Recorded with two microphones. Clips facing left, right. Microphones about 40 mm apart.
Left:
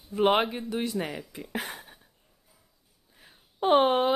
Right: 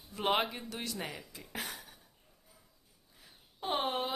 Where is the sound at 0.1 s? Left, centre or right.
Centre.